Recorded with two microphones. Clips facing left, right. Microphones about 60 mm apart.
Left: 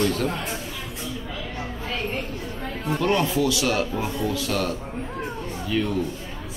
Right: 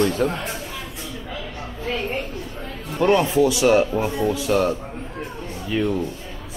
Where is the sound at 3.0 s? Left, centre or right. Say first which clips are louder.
Right 6 dB; right.